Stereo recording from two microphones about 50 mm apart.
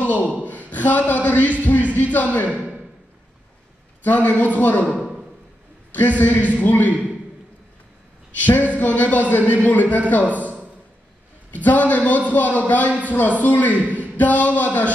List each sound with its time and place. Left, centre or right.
0.3 s a man's voice: left
2.4 s speech: right
4.0 s a man's voice: left
4.9 s a sound: centre
5.9 s a man's voice: left
8.4 s a man's voice: left
11.5 s a man's voice: left